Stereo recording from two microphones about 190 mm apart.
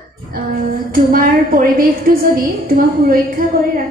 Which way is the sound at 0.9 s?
50° right (ahead or behind).